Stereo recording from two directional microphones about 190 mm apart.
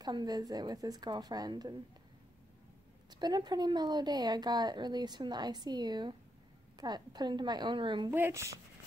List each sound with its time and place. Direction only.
0.0 s a woman's voice: 20° right (ahead or behind)
3.1 s a woman's voice: 20° right (ahead or behind)
8.1 s speech: 10° right (ahead or behind)